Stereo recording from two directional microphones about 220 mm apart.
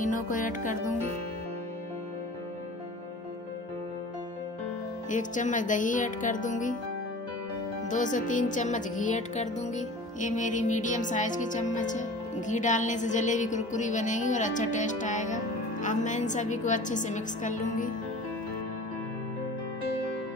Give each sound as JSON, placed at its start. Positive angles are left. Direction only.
{"t": 0.0, "sound": "music", "side_deg": 35}
{"t": 5.1, "sound": "music", "side_deg": 35}
{"t": 7.9, "sound": "music", "side_deg": 35}